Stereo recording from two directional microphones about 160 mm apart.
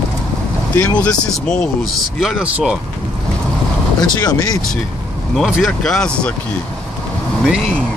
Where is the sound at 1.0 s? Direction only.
5° left (ahead or behind).